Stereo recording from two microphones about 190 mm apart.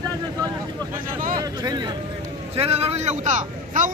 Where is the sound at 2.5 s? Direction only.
30° right (ahead or behind).